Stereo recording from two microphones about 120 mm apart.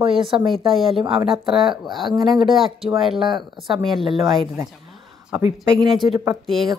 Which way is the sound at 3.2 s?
40° right (ahead or behind).